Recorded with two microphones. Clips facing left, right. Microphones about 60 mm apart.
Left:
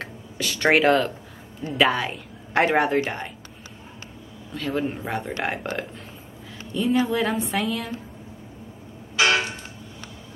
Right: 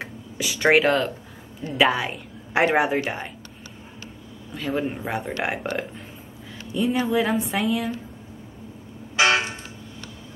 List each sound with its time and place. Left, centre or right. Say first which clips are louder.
0.0 s a sound: even; centre
1.7 s a woman's voice: even; centre
4.6 s a woman's voice: even; centre
9.1 s vehicle: right 1 dB; right